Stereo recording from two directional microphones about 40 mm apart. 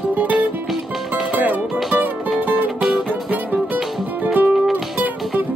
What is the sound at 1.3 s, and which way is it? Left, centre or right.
Music, right.